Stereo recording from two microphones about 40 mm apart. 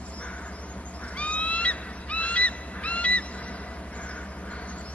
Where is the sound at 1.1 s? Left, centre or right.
Left.